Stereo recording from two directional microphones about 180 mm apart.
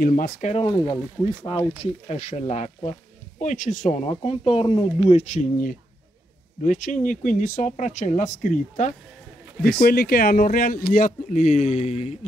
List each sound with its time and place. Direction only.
0.0 s speech: 50° left (ahead or behind)
0.6 s speech: 25° left (ahead or behind)
1.8 s speech: 35° left (ahead or behind)
4.1 s speech: 30° left (ahead or behind)
5.1 s speech: 40° left (ahead or behind)
9.8 s speech: 55° left (ahead or behind); by 12.3 s 35° left (ahead or behind)